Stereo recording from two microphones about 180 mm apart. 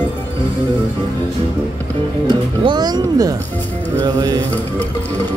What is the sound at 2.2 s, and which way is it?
Music, 25° right (ahead or behind).